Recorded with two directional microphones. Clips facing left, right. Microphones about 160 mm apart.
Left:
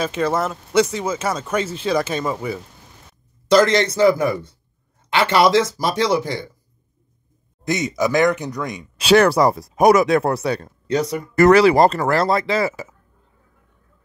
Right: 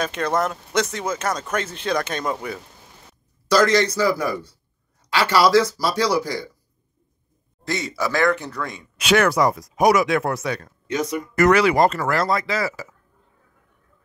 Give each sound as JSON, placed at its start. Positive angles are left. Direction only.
{"t": 0.0, "sound": "speech", "side_deg": 5}
{"t": 3.4, "sound": "a man's voice", "side_deg": 25}
{"t": 7.6, "sound": "speech", "side_deg": 20}
{"t": 8.9, "sound": "speech", "side_deg": 35}
{"t": 9.8, "sound": "speech", "side_deg": 55}
{"t": 10.0, "sound": "speech", "side_deg": 35}